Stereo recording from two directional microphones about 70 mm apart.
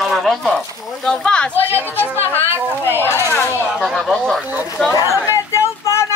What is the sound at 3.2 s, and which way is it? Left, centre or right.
Speech, left.